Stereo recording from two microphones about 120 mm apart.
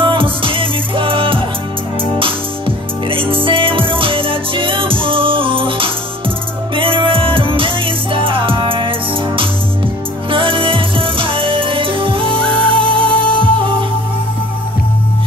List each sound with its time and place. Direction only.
0.0 s music: 45° right (ahead or behind)
10.3 s music: 45° right (ahead or behind)